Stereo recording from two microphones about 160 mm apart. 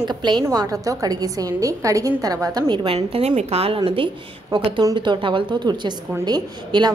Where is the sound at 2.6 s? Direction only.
35° right (ahead or behind).